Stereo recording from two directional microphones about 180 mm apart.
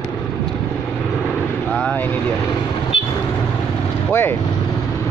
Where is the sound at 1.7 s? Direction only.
5° left (ahead or behind).